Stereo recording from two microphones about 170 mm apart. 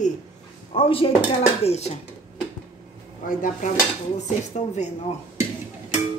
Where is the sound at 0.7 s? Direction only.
35° left (ahead or behind).